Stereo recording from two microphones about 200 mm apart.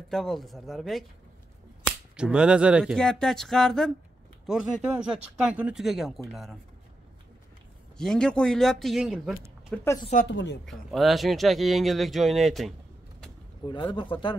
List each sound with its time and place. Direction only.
0.1 s speech: centre (ahead or behind)
8.0 s speech: 5° left (ahead or behind)
9.3 s a sound: 10° right (ahead or behind)
10.3 s speech: 60° left (ahead or behind)
10.6 s speech: centre (ahead or behind)
13.9 s a man's voice: 25° left (ahead or behind)